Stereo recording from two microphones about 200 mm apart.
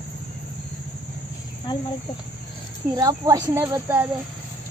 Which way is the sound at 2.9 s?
20° right (ahead or behind).